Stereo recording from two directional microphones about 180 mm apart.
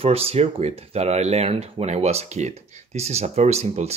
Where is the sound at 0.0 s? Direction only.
35° right (ahead or behind).